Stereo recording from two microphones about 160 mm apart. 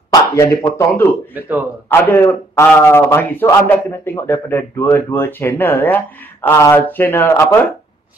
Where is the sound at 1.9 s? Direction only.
15° left (ahead or behind).